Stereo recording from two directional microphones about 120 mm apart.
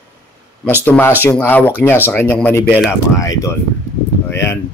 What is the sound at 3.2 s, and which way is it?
Speech, 25° left (ahead or behind).